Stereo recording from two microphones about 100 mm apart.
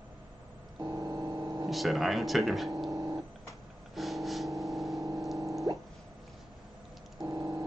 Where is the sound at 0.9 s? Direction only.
30° right (ahead or behind).